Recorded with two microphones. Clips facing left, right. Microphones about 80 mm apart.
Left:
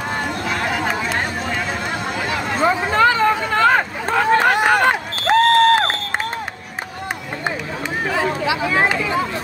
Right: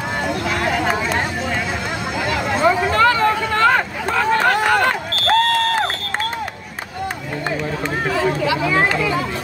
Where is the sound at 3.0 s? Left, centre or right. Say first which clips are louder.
Even; centre.